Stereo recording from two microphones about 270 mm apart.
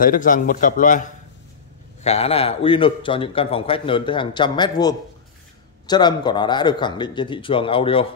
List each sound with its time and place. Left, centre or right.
0.0 s a man's voice: left